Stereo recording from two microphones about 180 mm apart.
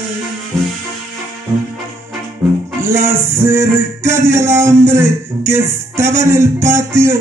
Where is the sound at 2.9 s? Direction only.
15° right (ahead or behind).